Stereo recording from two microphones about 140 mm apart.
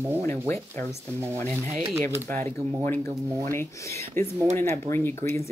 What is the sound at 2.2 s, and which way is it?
Speech, 10° left (ahead or behind).